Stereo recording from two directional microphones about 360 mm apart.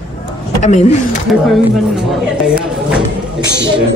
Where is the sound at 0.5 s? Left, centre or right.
Centre.